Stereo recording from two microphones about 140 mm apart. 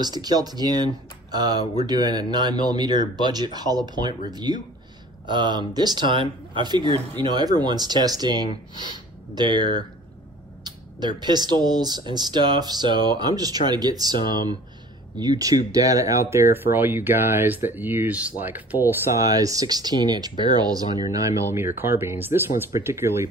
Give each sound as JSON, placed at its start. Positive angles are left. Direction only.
{"t": 0.0, "sound": "speech", "side_deg": -30}
{"t": 19.2, "sound": "speech", "side_deg": -25}